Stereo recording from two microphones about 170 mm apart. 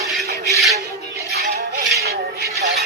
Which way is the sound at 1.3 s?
85° right.